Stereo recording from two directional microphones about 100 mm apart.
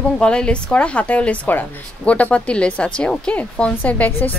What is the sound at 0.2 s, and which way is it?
A woman's voice, 10° left (ahead or behind).